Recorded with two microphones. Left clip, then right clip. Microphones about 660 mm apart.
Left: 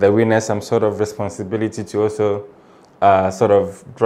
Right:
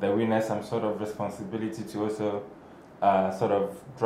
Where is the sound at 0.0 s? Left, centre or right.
Left.